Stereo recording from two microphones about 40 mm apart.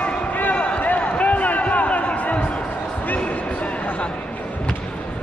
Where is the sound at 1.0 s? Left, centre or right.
Left.